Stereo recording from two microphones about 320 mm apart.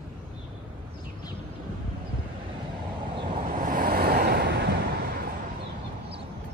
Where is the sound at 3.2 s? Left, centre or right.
Right.